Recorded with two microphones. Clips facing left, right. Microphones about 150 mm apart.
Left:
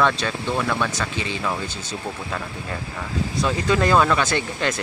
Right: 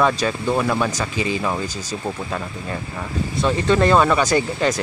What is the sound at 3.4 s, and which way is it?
Speech, 5° left (ahead or behind).